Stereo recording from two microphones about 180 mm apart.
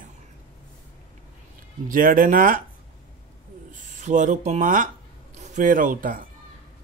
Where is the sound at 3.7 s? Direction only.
45° right (ahead or behind).